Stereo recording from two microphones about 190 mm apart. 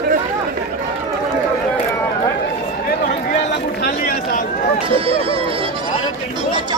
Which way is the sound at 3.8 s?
55° left (ahead or behind).